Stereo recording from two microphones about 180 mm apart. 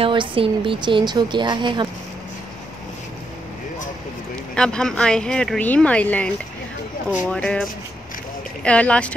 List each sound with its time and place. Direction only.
0.0 s a woman's voice: 30° right (ahead or behind)
4.6 s speech: 5° left (ahead or behind)
8.6 s speech: 5° left (ahead or behind)